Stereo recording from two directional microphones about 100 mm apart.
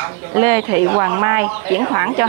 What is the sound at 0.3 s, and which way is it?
Speech, 25° right (ahead or behind).